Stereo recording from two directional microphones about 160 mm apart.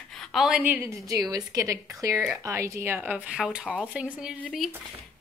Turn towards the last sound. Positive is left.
turn(degrees=-5)  # may be behind; listen again after turning